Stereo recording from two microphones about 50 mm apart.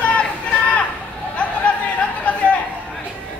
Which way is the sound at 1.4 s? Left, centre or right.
Left.